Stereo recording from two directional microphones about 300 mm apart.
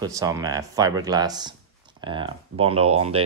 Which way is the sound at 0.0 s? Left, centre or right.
Centre.